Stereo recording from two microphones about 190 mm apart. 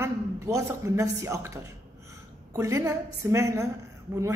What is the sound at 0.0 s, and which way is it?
A woman's voice, 15° right (ahead or behind).